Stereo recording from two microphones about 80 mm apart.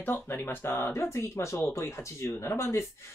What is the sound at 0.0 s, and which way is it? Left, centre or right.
Speech, left.